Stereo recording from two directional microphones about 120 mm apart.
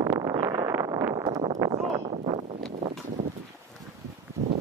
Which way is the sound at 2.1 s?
65° right (ahead or behind).